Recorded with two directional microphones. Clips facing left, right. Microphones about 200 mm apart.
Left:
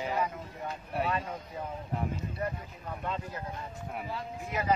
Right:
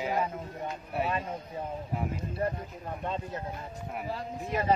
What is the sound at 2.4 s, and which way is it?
Speech, 30° right (ahead or behind).